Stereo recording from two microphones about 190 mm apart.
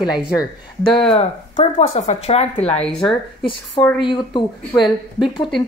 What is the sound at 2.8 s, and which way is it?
Speech, 5° left (ahead or behind).